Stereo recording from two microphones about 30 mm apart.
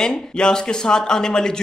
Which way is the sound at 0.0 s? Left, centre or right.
Left.